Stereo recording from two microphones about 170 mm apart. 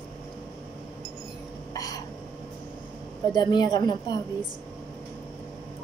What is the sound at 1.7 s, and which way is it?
Hiccup, 20° left (ahead or behind).